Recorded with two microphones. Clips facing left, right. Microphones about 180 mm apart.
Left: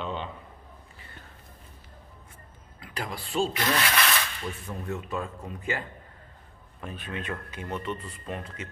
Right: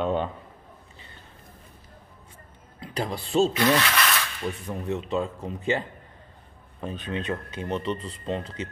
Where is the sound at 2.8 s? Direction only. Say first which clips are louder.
Right 6 dB; 30° right (ahead or behind).